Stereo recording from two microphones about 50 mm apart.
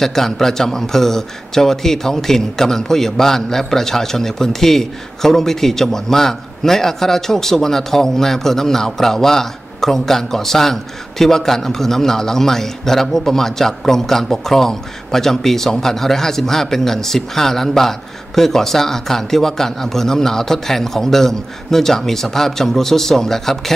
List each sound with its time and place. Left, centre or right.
0.0 s a man's voice: centre